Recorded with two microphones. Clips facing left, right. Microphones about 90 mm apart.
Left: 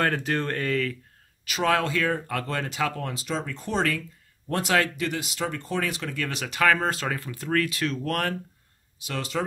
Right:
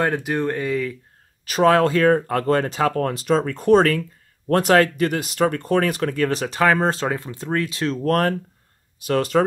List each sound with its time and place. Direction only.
0.0 s speech: 15° right (ahead or behind)
1.4 s speech: 40° right (ahead or behind)
9.0 s speech: 50° right (ahead or behind)